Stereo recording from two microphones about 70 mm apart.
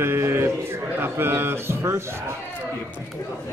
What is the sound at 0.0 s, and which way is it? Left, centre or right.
A man's voice, right.